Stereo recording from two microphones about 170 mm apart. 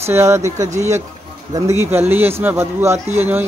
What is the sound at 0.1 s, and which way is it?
Speech, 15° right (ahead or behind).